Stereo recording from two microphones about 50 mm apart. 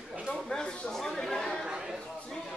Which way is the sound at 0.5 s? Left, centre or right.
Centre.